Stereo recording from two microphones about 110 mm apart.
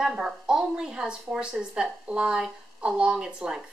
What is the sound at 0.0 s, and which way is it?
A woman's voice, 5° right (ahead or behind).